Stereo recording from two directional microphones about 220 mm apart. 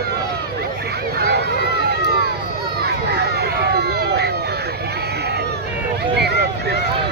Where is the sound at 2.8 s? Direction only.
45° right (ahead or behind).